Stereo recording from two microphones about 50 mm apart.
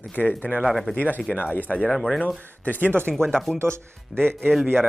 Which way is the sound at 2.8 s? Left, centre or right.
Right.